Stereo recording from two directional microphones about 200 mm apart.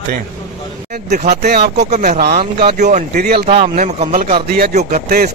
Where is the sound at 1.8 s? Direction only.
35° right (ahead or behind).